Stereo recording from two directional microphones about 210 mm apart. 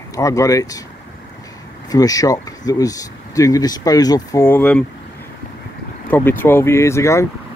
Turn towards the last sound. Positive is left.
turn(degrees=15)  # may be behind; listen again after turning